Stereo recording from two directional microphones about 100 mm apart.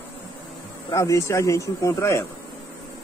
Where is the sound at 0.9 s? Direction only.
30° left (ahead or behind).